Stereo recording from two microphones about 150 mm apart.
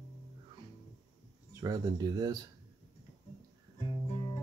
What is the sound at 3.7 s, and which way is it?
Music, 35° left (ahead or behind).